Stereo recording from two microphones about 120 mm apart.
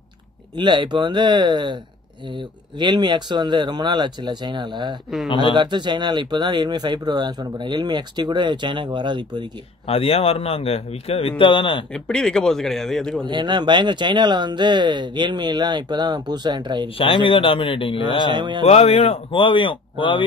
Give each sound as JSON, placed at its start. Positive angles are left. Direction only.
{"t": 0.6, "sound": "speech", "side_deg": -40}
{"t": 9.8, "sound": "speech", "side_deg": 55}
{"t": 11.9, "sound": "a man's voice", "side_deg": 5}
{"t": 13.2, "sound": "speech", "side_deg": -40}
{"t": 16.9, "sound": "speech", "side_deg": 45}
{"t": 18.3, "sound": "speech", "side_deg": -40}
{"t": 18.6, "sound": "speech", "side_deg": 60}